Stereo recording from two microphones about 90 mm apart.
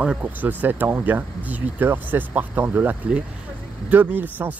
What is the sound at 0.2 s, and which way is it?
Speech, 20° right (ahead or behind).